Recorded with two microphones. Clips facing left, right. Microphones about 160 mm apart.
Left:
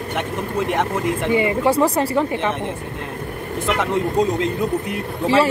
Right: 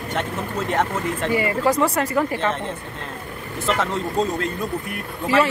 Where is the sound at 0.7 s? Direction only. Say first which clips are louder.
Even; 15° left (ahead or behind).